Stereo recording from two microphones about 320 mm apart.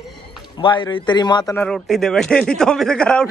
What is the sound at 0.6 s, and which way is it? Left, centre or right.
Speech, centre.